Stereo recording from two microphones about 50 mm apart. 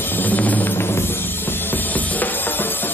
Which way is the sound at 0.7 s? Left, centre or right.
Left.